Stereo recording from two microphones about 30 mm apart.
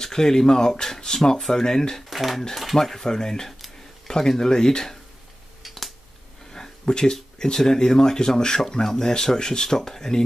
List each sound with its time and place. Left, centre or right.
0.0 s speech: centre
2.0 s a sound: centre
2.6 s speech: centre
6.5 s speech: left